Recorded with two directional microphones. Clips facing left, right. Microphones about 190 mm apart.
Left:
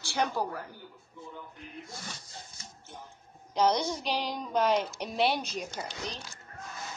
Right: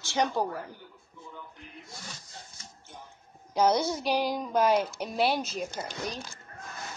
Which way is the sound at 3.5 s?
5° right (ahead or behind).